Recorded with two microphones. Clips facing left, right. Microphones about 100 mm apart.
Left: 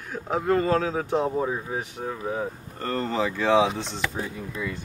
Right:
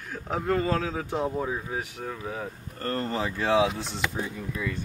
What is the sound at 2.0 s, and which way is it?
Speech, 25° left (ahead or behind).